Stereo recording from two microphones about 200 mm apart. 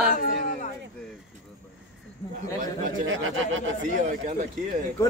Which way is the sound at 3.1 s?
75° right (ahead or behind).